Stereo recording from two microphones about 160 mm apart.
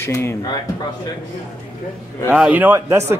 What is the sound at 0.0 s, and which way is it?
Speech, 15° left (ahead or behind).